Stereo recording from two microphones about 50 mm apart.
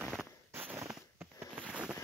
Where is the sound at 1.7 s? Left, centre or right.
Centre.